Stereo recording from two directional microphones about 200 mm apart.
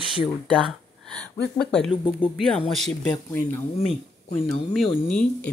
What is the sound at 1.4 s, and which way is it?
Speech, 55° left (ahead or behind).